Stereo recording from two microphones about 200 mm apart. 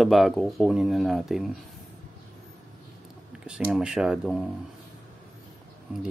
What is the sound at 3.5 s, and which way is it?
Speech, 5° right (ahead or behind).